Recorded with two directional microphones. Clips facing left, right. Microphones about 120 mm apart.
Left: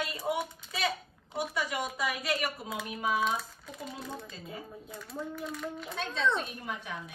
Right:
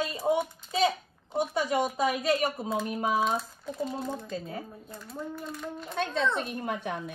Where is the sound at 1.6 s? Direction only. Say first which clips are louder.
Right 7 dB; 25° right (ahead or behind).